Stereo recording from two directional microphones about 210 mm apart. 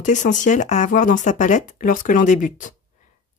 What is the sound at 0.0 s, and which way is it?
A woman's voice, 35° left (ahead or behind).